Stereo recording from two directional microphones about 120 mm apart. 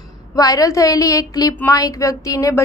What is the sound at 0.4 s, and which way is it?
A woman's voice, 30° left (ahead or behind).